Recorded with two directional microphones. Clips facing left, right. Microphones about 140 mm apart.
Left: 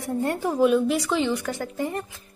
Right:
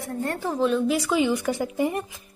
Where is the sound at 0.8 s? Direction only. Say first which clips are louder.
Right 1 dB; 5° right (ahead or behind).